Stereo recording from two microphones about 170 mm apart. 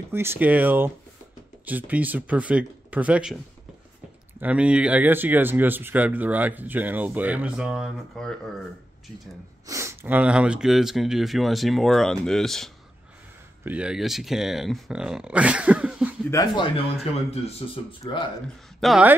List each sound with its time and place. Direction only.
0.1 s speech: 15° right (ahead or behind)
4.4 s speech: 10° right (ahead or behind)
9.7 s speech: 15° right (ahead or behind)
16.3 s a man's voice: 25° left (ahead or behind)
18.0 s a man's voice: 25° left (ahead or behind)
18.8 s speech: centre (ahead or behind)